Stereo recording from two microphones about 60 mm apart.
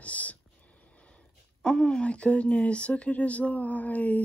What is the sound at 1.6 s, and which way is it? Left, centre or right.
Speech, centre.